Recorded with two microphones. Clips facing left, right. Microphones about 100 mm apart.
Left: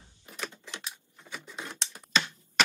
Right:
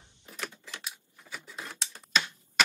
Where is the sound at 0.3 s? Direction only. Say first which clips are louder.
Left 1 dB; centre (ahead or behind).